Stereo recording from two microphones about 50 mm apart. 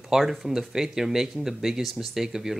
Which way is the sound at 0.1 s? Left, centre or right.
Centre.